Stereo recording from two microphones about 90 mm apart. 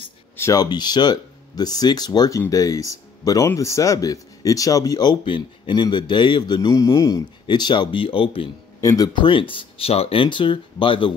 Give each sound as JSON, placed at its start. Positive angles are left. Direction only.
{"t": 0.6, "sound": "speech", "side_deg": 50}
{"t": 5.2, "sound": "a man's voice", "side_deg": 65}
{"t": 7.4, "sound": "speech", "side_deg": 55}
{"t": 8.8, "sound": "speech", "side_deg": 40}
{"t": 9.1, "sound": "speech", "side_deg": 70}